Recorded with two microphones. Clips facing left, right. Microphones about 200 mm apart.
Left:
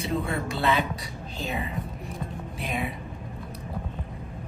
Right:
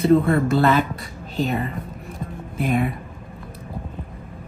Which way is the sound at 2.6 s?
50° right (ahead or behind).